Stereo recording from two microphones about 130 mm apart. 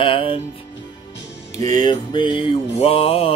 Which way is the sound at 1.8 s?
35° left (ahead or behind).